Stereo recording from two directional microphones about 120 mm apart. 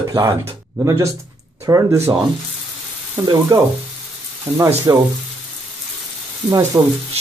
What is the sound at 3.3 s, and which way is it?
Frying, 30° right (ahead or behind).